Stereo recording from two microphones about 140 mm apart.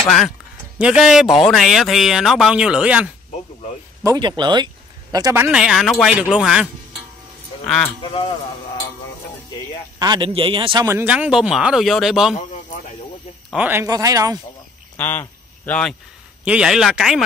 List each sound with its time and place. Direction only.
0.7 s speech: 5° right (ahead or behind)
4.0 s a man's voice: 25° right (ahead or behind)
5.5 s speech: 5° right (ahead or behind)
8.0 s speech: 40° left (ahead or behind)
9.9 s a man's voice: 30° right (ahead or behind)
10.8 s speech: 15° right (ahead or behind)
13.5 s a man's voice: 10° right (ahead or behind)
13.8 s speech: 25° right (ahead or behind)
15.0 s speech: 15° left (ahead or behind)
16.4 s speech: 5° right (ahead or behind)